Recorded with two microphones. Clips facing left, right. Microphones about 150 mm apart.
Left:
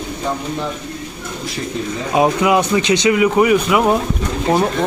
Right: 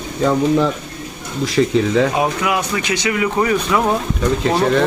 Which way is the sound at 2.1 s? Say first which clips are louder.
Left 4 dB; 20° left (ahead or behind).